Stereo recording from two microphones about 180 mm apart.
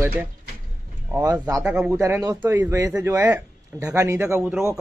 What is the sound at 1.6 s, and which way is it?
Speech, 10° right (ahead or behind).